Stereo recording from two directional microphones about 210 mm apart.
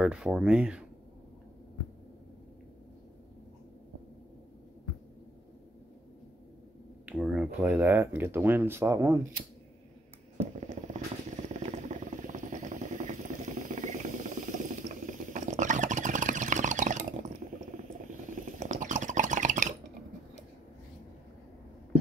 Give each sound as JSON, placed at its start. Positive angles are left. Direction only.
{"t": 0.0, "sound": "speech", "side_deg": -5}
{"t": 7.1, "sound": "speech", "side_deg": -5}
{"t": 10.3, "sound": "fireworks", "side_deg": -35}
{"t": 11.4, "sound": "vehicle", "side_deg": -35}